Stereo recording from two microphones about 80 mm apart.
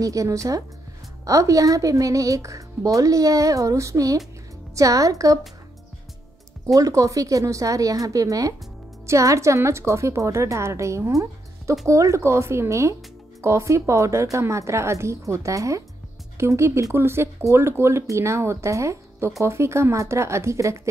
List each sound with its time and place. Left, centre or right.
0.0 s speech: right
6.6 s speech: right